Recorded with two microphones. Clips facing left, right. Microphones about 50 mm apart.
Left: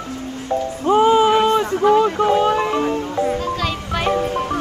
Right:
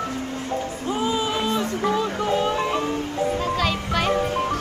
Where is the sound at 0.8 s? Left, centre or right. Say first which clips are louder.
Left 12 dB; left.